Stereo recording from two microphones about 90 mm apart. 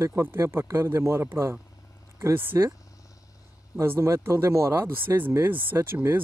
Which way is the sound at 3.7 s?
30° right (ahead or behind).